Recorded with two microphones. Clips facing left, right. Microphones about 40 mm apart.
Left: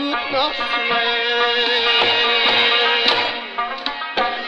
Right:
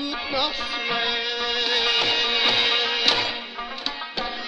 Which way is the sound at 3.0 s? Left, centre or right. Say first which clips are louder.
Left 5 dB; left.